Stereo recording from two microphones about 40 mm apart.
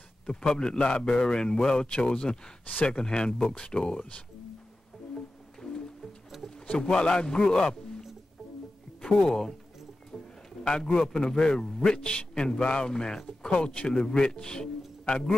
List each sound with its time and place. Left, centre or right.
0.3 s a man's voice: centre
2.6 s speech: left
3.0 s a man's voice: left
5.6 s music: centre
6.3 s pigeon: centre
6.8 s a man's voice: centre
9.2 s a man's voice: centre
10.1 s a sound: centre
10.6 s a man's voice: centre
13.6 s a man's voice: left